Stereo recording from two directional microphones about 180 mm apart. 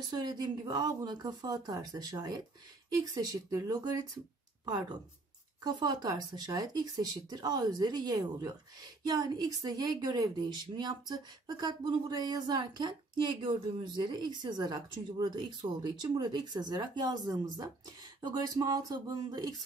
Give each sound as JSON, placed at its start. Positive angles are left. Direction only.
{"t": 0.2, "sound": "speech", "side_deg": -20}